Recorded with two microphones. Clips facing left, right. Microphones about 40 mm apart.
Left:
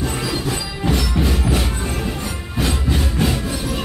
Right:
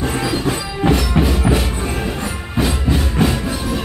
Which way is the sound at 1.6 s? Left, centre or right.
Centre.